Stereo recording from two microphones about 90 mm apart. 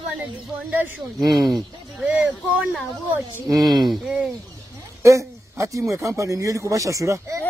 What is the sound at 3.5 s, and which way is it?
Speech, 50° right (ahead or behind).